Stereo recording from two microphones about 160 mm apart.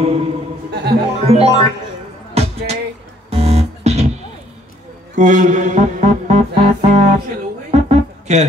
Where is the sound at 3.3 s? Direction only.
40° right (ahead or behind).